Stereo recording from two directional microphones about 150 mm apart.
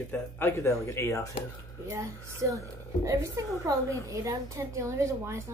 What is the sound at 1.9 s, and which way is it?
A woman's voice, 20° right (ahead or behind).